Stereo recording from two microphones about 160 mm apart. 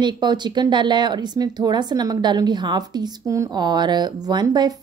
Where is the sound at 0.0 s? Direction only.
25° right (ahead or behind).